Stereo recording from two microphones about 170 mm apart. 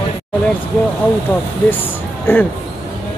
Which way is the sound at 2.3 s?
10° left (ahead or behind).